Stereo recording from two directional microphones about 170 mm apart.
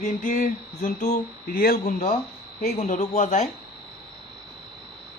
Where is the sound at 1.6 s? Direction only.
60° left (ahead or behind).